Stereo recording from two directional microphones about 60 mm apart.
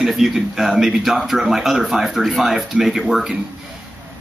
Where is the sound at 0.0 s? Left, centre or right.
Centre.